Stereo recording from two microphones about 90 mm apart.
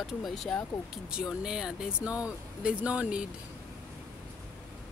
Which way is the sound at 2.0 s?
40° left (ahead or behind).